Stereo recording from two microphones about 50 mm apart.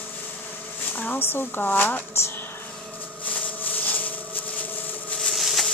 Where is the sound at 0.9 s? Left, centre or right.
Left.